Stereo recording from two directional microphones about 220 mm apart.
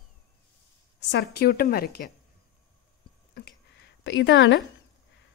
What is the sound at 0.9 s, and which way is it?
Speech, 50° left (ahead or behind).